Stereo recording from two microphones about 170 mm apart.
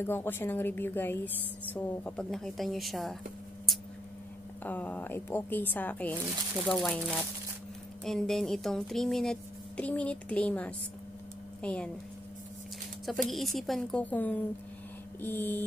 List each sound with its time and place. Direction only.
0.0 s a woman's voice: 15° left (ahead or behind)
4.6 s a woman's voice: 10° left (ahead or behind)
13.0 s a woman's voice: centre (ahead or behind)